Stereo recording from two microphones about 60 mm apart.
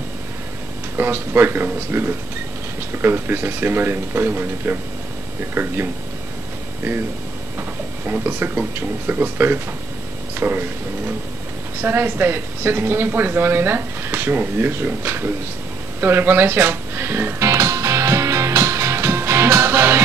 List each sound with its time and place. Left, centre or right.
0.9 s a woman's voice: right
17.4 s music: right